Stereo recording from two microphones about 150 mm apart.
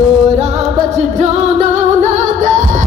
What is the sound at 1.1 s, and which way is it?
Music, 50° right (ahead or behind).